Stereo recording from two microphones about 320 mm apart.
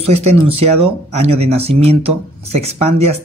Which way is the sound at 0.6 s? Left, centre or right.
Centre.